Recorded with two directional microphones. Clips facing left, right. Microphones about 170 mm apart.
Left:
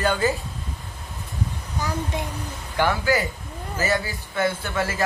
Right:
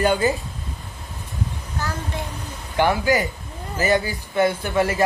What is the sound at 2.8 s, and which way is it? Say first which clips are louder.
A man's voice: right 3 dB; 20° right (ahead or behind).